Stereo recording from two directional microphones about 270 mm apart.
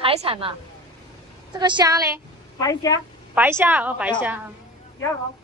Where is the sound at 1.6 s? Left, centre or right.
Centre.